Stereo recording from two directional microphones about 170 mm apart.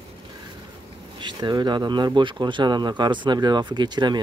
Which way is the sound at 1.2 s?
25° right (ahead or behind).